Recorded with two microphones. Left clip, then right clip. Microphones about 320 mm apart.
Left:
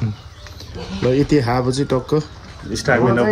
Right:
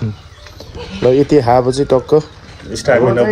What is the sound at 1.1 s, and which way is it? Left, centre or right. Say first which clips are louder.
Speech: right 7 dB; centre.